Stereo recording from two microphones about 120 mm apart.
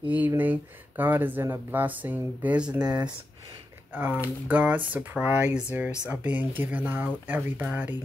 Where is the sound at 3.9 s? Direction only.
15° right (ahead or behind).